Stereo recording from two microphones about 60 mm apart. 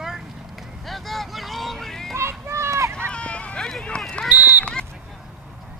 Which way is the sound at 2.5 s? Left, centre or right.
Right.